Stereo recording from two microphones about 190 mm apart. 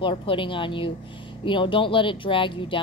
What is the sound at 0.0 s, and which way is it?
Speech, 25° left (ahead or behind).